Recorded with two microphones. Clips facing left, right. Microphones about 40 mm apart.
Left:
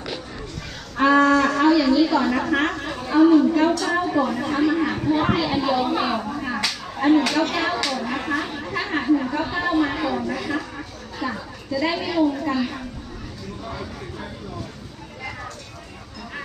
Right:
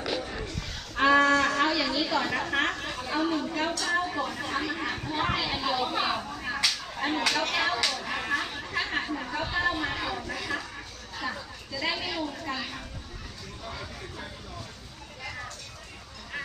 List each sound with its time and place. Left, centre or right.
0.9 s cattle: centre
1.8 s a sound: centre
2.5 s a woman's voice: centre